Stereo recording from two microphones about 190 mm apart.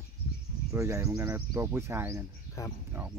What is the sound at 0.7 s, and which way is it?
Speech, 15° right (ahead or behind).